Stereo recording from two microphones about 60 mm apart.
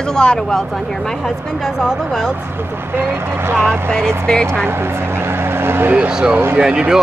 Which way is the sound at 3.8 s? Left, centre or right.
Centre.